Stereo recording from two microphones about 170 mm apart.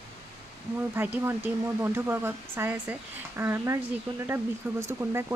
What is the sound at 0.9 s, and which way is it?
Speech, 15° right (ahead or behind).